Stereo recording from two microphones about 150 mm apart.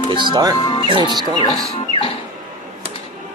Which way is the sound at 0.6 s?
25° left (ahead or behind).